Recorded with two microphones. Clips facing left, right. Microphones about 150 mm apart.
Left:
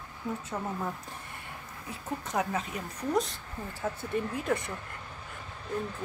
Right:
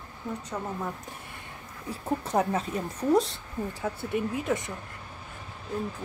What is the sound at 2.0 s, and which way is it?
A woman's voice, 30° right (ahead or behind).